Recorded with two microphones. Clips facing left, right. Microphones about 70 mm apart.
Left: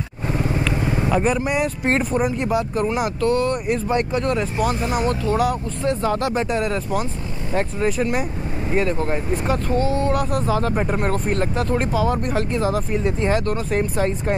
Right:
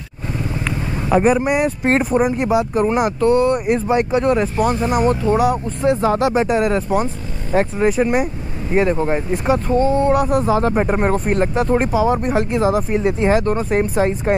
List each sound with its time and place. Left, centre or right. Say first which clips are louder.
0.7 s vehicle: right 1 dB; centre
2.0 s speech: right 4 dB; centre; by 5.1 s right
5.1 s speech: right 4 dB; centre